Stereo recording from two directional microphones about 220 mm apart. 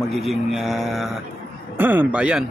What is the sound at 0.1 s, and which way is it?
Speech, centre (ahead or behind).